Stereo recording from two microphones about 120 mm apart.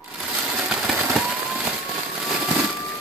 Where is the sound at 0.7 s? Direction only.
10° right (ahead or behind).